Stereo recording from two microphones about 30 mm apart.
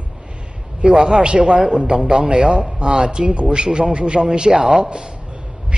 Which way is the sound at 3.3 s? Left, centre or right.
Right.